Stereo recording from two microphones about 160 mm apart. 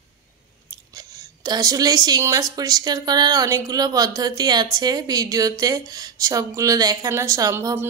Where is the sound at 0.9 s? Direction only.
25° right (ahead or behind).